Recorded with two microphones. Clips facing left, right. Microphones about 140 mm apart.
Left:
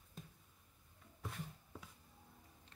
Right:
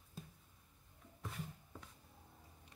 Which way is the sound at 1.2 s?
Centre (ahead or behind).